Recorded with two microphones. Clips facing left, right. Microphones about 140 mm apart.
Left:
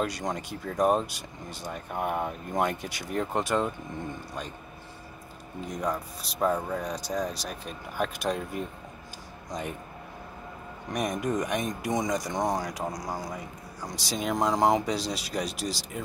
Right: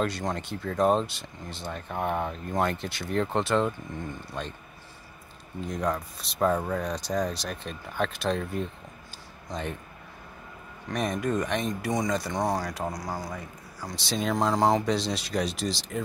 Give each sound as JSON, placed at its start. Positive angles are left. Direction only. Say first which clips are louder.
{"t": 0.0, "sound": "speech", "louder": "right 1 dB", "side_deg": 15}
{"t": 5.7, "sound": "speech", "louder": "right 2 dB", "side_deg": 10}
{"t": 10.9, "sound": "speech", "louder": "right 1 dB", "side_deg": 15}